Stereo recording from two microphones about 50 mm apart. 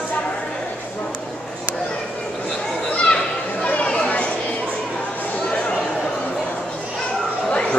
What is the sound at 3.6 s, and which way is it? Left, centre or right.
Chatter, left.